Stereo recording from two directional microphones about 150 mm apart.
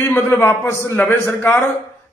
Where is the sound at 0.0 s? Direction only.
15° left (ahead or behind).